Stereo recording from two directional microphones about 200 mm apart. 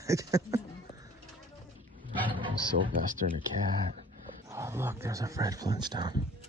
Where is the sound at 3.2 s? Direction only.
40° right (ahead or behind).